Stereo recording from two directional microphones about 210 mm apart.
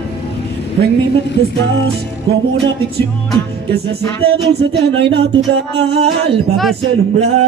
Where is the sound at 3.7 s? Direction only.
50° right (ahead or behind).